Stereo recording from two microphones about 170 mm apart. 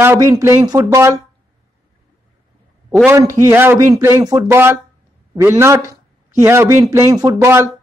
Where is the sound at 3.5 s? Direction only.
15° right (ahead or behind).